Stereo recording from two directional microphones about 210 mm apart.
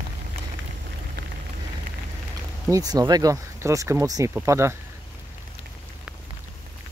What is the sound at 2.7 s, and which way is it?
Speech, 15° right (ahead or behind).